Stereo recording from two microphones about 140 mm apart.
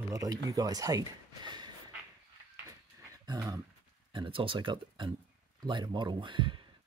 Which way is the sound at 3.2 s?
30° right (ahead or behind).